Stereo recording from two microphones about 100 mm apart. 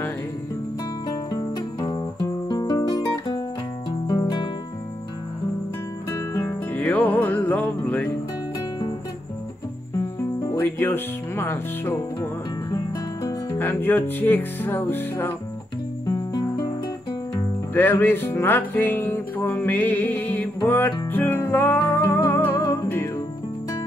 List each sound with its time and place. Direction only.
1.0 s cricket: 40° left (ahead or behind)
2.2 s music: 35° left (ahead or behind)
6.7 s music: 15° left (ahead or behind)
10.6 s music: 20° left (ahead or behind)
13.6 s music: 20° left (ahead or behind)
16.1 s music: 40° left (ahead or behind)
17.7 s music: 20° left (ahead or behind)
22.6 s music: 35° left (ahead or behind)